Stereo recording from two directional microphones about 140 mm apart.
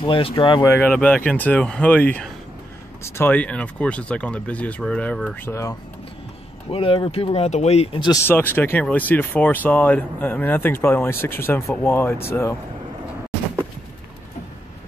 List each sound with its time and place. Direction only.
0.0 s speech: 35° left (ahead or behind)
0.6 s speech: 15° left (ahead or behind)
6.7 s speech: 40° left (ahead or behind)
8.2 s speech: 15° left (ahead or behind)